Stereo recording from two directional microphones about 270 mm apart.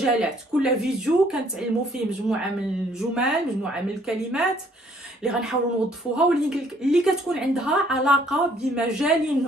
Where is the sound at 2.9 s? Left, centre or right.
Centre.